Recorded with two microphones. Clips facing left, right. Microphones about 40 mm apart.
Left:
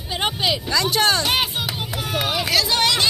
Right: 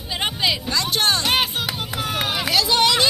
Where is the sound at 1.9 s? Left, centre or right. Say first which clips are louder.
Right 2 dB; right.